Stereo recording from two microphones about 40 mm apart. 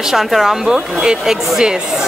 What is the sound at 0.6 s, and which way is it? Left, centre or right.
Speech, centre.